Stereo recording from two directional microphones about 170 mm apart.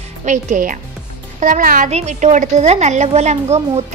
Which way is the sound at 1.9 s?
40° right (ahead or behind).